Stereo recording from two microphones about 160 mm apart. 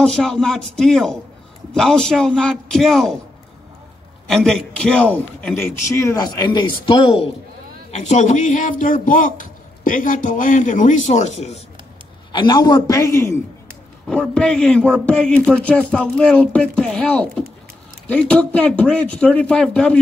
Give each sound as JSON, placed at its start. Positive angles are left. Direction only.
{"t": 0.0, "sound": "a man's voice", "side_deg": 5}
{"t": 4.3, "sound": "a man's voice", "side_deg": 5}
{"t": 7.9, "sound": "speech", "side_deg": 45}
{"t": 12.3, "sound": "a man's voice", "side_deg": 25}
{"t": 14.0, "sound": "a man's voice", "side_deg": 5}